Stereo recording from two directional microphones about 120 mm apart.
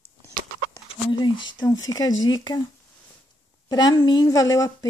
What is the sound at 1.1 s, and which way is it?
Speech, 40° left (ahead or behind).